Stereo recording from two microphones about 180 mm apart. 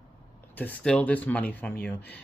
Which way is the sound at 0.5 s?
5° left (ahead or behind).